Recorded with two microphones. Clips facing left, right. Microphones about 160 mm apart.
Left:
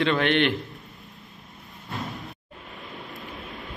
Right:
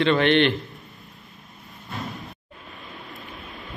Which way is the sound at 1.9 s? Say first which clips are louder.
Even; centre (ahead or behind).